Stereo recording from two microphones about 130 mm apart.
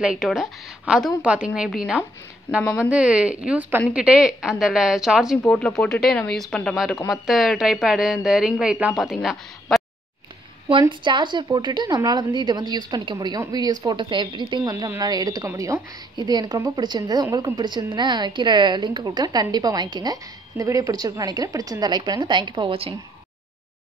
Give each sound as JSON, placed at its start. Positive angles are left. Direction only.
{"t": 0.0, "sound": "a woman's voice", "side_deg": -5}
{"t": 2.6, "sound": "a woman's voice", "side_deg": 20}
{"t": 2.9, "sound": "a woman's voice", "side_deg": -10}
{"t": 10.7, "sound": "a woman's voice", "side_deg": -40}